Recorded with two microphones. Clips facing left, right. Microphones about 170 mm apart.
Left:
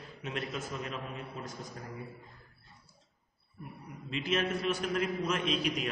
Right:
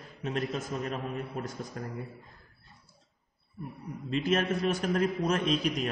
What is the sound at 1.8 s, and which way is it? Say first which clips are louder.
Speech: right 7 dB; 60° right (ahead or behind).